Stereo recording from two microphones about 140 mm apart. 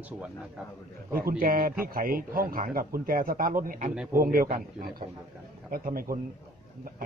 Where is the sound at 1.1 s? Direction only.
85° right.